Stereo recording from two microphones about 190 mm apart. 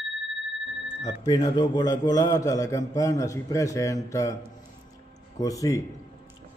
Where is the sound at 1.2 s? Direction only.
20° left (ahead or behind).